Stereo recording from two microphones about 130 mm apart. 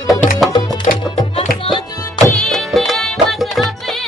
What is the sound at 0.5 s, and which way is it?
Music, 35° left (ahead or behind).